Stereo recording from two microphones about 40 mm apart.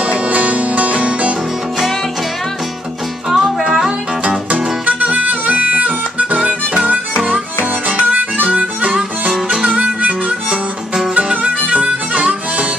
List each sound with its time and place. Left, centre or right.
0.1 s music: right
3.3 s music: centre
4.5 s music: right
8.1 s harmonica: right
11.7 s harmonica: right